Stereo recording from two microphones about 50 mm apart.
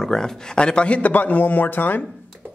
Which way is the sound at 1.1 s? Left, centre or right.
Left.